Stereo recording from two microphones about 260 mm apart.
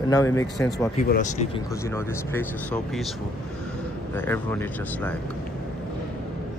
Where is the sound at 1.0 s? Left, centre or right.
Left.